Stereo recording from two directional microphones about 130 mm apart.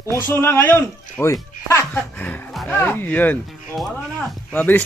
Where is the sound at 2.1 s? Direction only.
10° left (ahead or behind).